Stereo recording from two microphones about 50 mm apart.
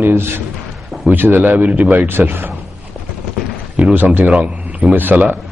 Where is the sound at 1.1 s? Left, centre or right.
Right.